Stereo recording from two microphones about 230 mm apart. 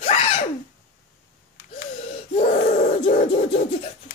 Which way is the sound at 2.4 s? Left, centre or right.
Left.